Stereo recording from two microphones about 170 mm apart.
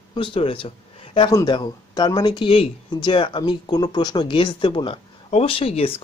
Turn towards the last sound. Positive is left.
turn(degrees=35)  # may be behind; listen again after turning